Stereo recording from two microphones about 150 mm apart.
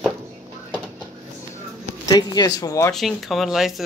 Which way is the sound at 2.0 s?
25° left (ahead or behind).